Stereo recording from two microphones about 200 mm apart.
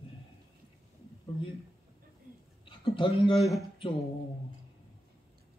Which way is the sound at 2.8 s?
25° left (ahead or behind).